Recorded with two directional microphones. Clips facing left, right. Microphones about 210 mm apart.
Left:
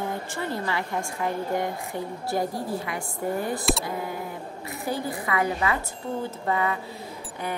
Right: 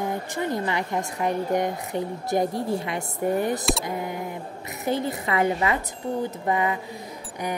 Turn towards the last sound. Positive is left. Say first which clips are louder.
# right 2 dB
turn(degrees=-15)  # may be behind; listen again after turning